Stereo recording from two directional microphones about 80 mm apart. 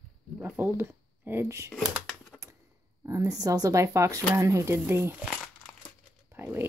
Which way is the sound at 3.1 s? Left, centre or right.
Right.